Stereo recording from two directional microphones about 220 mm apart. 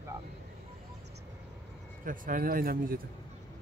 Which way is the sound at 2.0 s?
40° right (ahead or behind).